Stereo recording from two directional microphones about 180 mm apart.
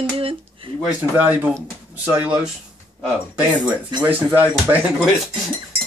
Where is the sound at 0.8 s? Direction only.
10° right (ahead or behind).